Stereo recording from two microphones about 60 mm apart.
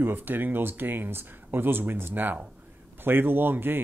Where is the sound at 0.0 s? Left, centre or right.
Right.